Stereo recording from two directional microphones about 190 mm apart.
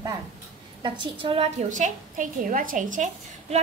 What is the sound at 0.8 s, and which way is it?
A woman's voice, 25° right (ahead or behind).